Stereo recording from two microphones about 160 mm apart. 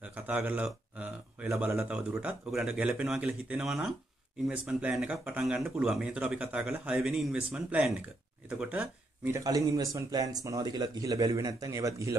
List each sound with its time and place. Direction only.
0.0 s speech: 10° right (ahead or behind)
9.4 s speech: 20° right (ahead or behind)